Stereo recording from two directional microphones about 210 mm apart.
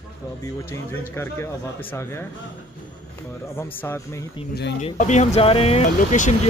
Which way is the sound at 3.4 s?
10° left (ahead or behind).